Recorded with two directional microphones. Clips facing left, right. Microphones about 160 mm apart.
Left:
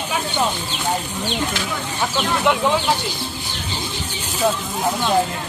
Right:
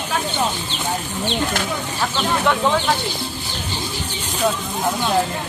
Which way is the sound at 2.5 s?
15° left (ahead or behind).